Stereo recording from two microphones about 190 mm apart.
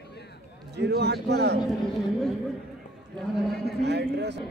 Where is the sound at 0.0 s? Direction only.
60° left (ahead or behind).